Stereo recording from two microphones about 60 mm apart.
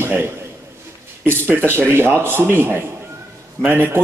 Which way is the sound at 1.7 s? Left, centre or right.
Right.